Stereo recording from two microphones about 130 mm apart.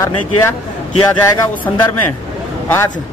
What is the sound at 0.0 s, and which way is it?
Speech, 20° left (ahead or behind).